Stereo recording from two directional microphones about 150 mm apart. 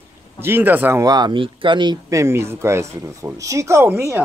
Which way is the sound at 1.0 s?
25° right (ahead or behind).